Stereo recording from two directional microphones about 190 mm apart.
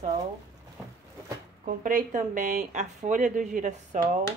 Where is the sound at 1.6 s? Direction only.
45° right (ahead or behind).